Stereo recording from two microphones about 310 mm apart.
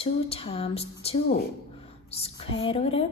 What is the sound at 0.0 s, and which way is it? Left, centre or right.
A woman's voice, centre.